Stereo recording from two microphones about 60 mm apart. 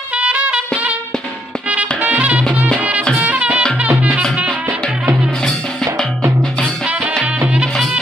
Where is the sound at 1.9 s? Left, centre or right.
Right.